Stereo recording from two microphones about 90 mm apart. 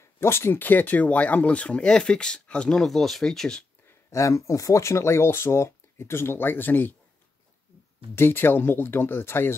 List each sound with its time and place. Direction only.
0.0 s speech: 30° left (ahead or behind); by 3.6 s 5° left (ahead or behind)
4.1 s speech: 35° left (ahead or behind)
8.2 s speech: 25° left (ahead or behind)